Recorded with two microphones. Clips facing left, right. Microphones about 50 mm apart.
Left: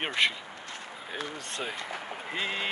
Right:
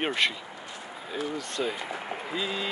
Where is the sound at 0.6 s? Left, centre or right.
Left.